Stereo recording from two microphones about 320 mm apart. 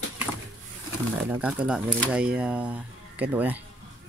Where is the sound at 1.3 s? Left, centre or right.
Centre.